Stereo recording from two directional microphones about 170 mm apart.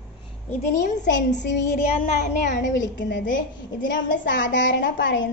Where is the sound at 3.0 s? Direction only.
90° left.